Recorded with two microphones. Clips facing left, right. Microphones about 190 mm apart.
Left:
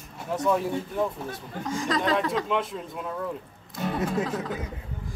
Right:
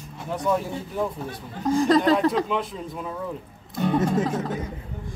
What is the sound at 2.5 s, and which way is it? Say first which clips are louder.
Speech: right 1 dB; centre (ahead or behind).